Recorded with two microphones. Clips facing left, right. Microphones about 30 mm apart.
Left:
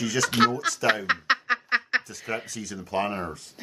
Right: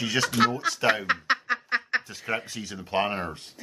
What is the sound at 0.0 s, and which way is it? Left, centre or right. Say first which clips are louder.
Speech: even; right.